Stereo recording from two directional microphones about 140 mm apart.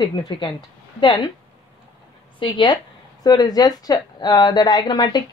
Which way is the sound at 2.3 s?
35° left (ahead or behind).